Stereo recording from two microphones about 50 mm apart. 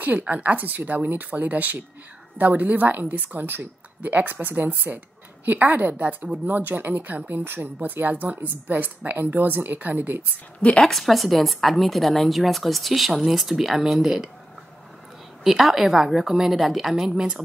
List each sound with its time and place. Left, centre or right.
0.0 s a woman's voice: right
10.8 s a woman's voice: centre
15.4 s a woman's voice: centre